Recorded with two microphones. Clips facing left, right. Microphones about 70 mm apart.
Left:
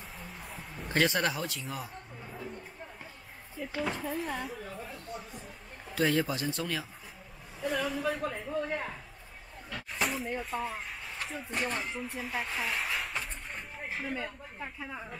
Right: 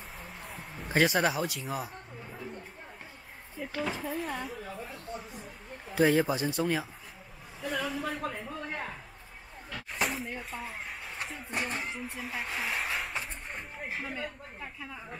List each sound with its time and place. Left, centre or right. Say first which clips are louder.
0.2 s a sound: even; centre
0.8 s a man's voice: right 2 dB; centre
3.7 s speech: even; centre
5.9 s speech: right 4 dB; centre
7.6 s speech: left 2 dB; centre
9.9 s a sound: left 1 dB; centre
11.2 s speech: left 2 dB; centre
14.6 s speech: left 3 dB; centre